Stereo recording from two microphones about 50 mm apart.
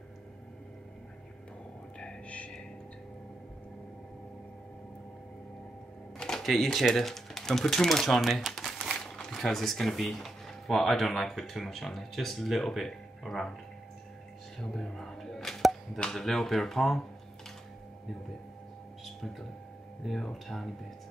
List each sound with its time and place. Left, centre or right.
2.0 s a sound: left
6.3 s speech: centre
14.6 s arrow: centre
16.0 s speech: centre
19.0 s a sound: centre
20.1 s speech: centre